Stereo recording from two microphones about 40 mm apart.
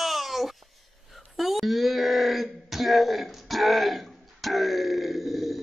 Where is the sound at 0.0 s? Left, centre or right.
Centre.